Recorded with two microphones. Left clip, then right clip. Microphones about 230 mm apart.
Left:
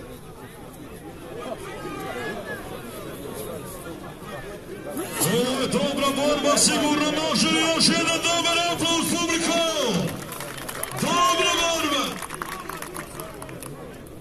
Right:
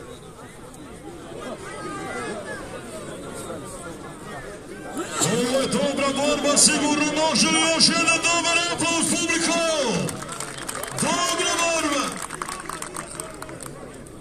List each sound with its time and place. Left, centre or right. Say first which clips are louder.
5.4 s speech: right 3 dB; centre
11.1 s music: left 3 dB; centre